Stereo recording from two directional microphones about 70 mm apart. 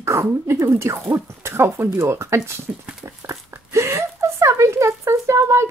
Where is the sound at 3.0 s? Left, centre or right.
Right.